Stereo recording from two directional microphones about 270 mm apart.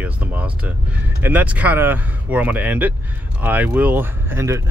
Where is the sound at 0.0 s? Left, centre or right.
Centre.